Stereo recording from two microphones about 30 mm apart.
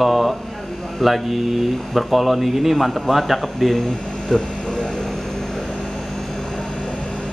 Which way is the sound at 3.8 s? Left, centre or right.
Left.